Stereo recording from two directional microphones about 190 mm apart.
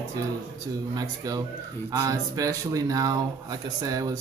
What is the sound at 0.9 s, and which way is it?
Speech, 20° right (ahead or behind).